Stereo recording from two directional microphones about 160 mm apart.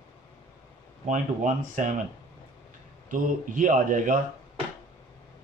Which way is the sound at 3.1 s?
55° right (ahead or behind).